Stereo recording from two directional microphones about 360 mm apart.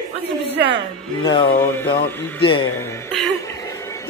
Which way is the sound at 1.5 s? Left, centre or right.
Centre.